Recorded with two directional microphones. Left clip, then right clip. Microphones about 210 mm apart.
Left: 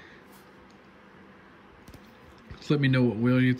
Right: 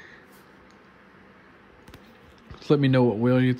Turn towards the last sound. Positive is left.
turn(degrees=-10)  # may be behind; listen again after turning